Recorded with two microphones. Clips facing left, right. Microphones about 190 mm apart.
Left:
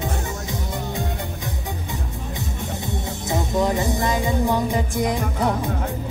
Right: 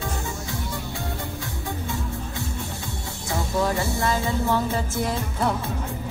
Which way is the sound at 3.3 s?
20° left (ahead or behind).